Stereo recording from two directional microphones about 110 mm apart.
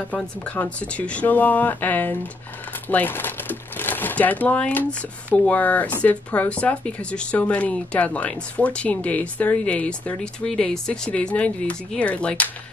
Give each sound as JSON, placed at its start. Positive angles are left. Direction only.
{"t": 0.1, "sound": "speech", "side_deg": 15}